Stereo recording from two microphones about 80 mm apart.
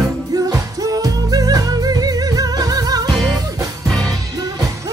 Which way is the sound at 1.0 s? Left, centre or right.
Right.